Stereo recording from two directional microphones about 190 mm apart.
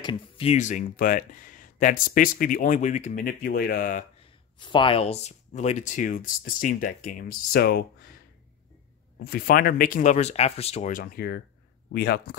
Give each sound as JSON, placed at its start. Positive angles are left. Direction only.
{"t": 0.0, "sound": "speech", "side_deg": 25}
{"t": 4.6, "sound": "speech", "side_deg": 25}
{"t": 9.2, "sound": "speech", "side_deg": 55}